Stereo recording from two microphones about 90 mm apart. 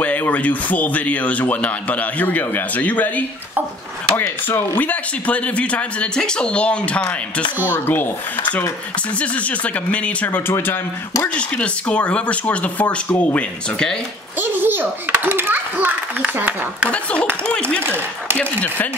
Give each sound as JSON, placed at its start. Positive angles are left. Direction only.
{"t": 0.0, "sound": "a man's voice", "side_deg": 15}
{"t": 11.2, "sound": "a man's voice", "side_deg": 10}
{"t": 14.4, "sound": "a child's voice", "side_deg": -25}
{"t": 16.9, "sound": "a man's voice", "side_deg": 15}
{"t": 17.8, "sound": "speech", "side_deg": -25}
{"t": 18.4, "sound": "a man's voice", "side_deg": 15}